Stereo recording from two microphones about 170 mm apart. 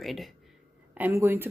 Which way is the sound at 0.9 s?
10° right (ahead or behind).